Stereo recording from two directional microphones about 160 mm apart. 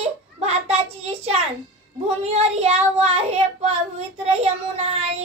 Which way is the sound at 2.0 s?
40° right (ahead or behind).